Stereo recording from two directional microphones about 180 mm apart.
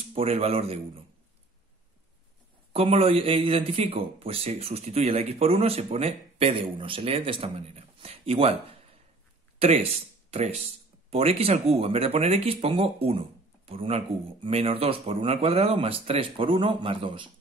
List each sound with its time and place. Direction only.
0.1 s a man's voice: 35° right (ahead or behind)
2.7 s a man's voice: 30° right (ahead or behind)